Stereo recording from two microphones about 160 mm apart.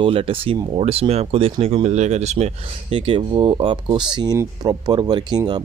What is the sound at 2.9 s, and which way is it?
Speech, 35° right (ahead or behind).